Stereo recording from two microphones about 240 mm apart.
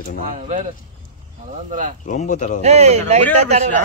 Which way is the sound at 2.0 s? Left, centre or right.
Left.